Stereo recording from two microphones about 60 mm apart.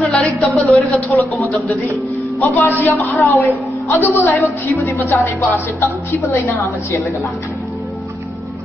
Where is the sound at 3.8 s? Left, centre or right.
Left.